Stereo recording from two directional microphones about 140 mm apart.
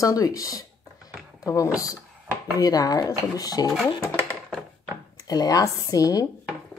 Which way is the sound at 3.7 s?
Centre (ahead or behind).